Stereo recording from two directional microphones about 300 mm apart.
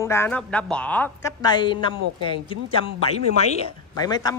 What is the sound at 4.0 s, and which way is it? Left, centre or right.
Speech, centre.